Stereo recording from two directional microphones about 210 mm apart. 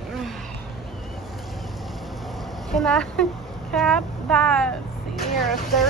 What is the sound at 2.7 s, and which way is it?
Speech, 5° left (ahead or behind).